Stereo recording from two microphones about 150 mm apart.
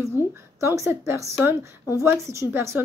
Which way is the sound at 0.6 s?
20° right (ahead or behind).